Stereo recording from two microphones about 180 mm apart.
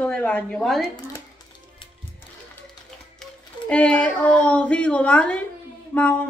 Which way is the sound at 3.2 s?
5° left (ahead or behind).